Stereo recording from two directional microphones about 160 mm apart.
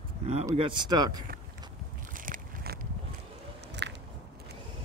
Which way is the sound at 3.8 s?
90° right.